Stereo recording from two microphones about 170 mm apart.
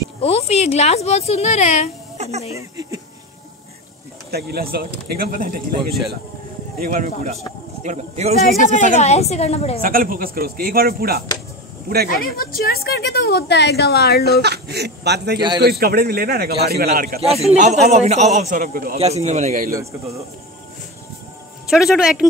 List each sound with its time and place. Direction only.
0.2 s speech: 35° left (ahead or behind)
2.1 s a sound: 40° right (ahead or behind)
2.5 s speech: 20° right (ahead or behind)
4.3 s speech: 70° right (ahead or behind)
6.8 s speech: 55° right (ahead or behind)
7.8 s a man's voice: 45° right (ahead or behind)
9.0 s speech: 40° left (ahead or behind)
9.8 s speech: 55° right (ahead or behind)
12.4 s a woman's voice: 60° left (ahead or behind)
14.4 s speech: 75° right (ahead or behind)
17.2 s a man's voice: 35° right (ahead or behind); by 18.9 s 55° right (ahead or behind)
18.9 s speech: 40° right (ahead or behind)
21.6 s speech: 5° right (ahead or behind)